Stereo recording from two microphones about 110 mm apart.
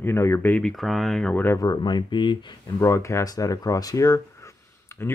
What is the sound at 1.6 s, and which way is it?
Speech, 40° left (ahead or behind).